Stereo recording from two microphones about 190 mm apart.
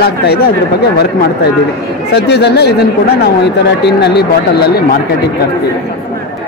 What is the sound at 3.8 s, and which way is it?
Speech, 60° left (ahead or behind).